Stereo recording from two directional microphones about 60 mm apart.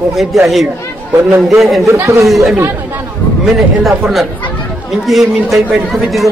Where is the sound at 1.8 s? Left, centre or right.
Right.